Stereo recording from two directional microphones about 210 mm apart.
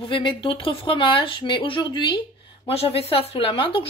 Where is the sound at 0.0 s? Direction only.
25° left (ahead or behind).